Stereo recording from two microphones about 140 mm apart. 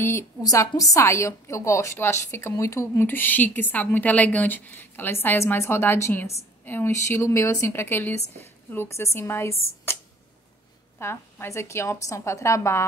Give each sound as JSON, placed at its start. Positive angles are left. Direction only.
{"t": 0.0, "sound": "a woman's voice", "side_deg": 20}
{"t": 11.0, "sound": "a woman's voice", "side_deg": 20}